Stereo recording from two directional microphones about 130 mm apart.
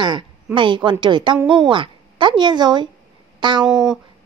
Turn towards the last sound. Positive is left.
turn(degrees=-5)  # may be behind; listen again after turning